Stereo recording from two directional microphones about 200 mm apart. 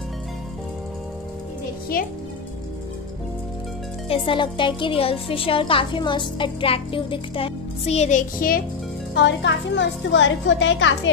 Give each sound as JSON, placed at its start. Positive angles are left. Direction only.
{"t": 2.0, "sound": "speech", "side_deg": 45}
{"t": 4.1, "sound": "a woman's voice", "side_deg": 25}
{"t": 9.1, "sound": "a woman's voice", "side_deg": 60}